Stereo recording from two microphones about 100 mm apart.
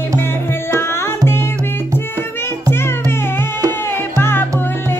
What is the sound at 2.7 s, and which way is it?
Music, 25° left (ahead or behind).